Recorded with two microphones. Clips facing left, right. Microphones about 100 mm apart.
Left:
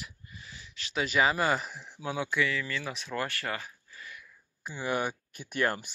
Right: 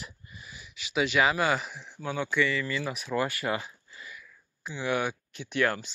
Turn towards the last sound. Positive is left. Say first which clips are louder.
# right 2 dB
turn(degrees=45)  # may be behind; listen again after turning